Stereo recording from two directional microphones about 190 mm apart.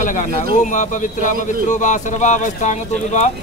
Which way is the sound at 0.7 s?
40° left (ahead or behind).